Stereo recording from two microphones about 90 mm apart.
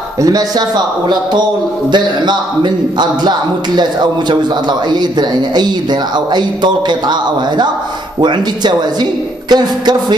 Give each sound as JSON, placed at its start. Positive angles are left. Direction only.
{"t": 0.2, "sound": "a man's voice", "side_deg": -40}